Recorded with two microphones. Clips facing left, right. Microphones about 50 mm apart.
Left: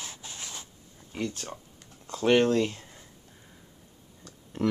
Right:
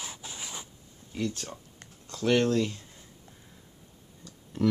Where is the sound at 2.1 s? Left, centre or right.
Left.